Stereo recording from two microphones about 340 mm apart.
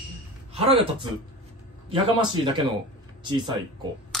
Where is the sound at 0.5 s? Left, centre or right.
Centre.